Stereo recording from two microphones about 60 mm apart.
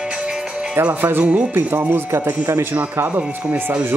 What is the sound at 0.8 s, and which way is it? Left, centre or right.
Speech, right.